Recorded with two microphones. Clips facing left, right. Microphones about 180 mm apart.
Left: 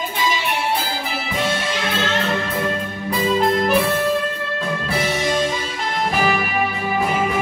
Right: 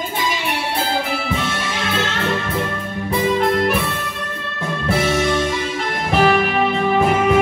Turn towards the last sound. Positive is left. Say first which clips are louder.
# right 5 dB
turn(degrees=10)  # may be behind; listen again after turning